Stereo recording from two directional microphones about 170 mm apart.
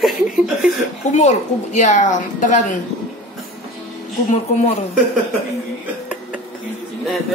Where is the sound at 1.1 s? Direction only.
40° left (ahead or behind).